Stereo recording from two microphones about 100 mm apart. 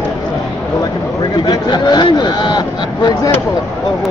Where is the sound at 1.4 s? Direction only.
45° left (ahead or behind).